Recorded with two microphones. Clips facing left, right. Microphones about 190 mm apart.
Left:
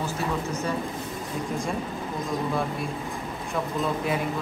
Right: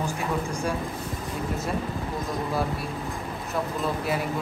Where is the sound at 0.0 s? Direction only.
15° right (ahead or behind).